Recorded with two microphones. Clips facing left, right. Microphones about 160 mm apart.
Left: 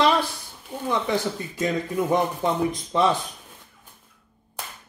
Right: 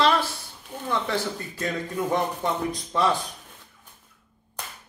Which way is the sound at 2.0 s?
20° left (ahead or behind).